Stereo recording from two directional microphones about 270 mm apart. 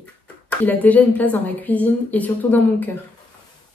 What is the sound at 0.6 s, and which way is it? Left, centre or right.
A woman's voice, centre.